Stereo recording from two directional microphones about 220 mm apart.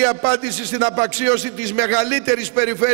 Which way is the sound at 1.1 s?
10° right (ahead or behind).